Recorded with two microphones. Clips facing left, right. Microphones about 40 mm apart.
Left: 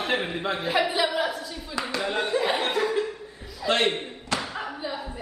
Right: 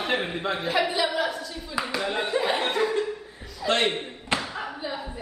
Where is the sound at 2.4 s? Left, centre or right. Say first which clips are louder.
Even; centre.